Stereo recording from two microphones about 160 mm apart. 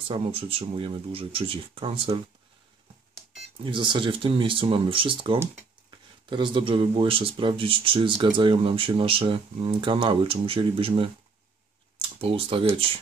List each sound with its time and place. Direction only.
0.1 s speech: 35° right (ahead or behind)
3.6 s speech: 30° right (ahead or behind)
12.2 s speech: 35° right (ahead or behind)